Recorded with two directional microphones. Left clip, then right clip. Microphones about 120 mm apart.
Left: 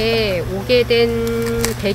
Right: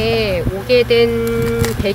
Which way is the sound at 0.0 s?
15° left (ahead or behind).